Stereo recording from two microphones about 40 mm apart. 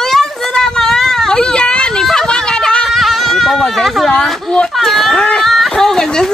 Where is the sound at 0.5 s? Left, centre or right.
Centre.